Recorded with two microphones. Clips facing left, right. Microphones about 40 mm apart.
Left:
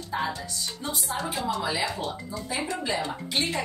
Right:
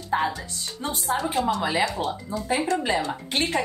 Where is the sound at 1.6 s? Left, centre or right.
Right.